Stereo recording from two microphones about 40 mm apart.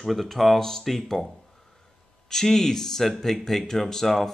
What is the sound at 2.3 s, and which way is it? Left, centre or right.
Speech, centre.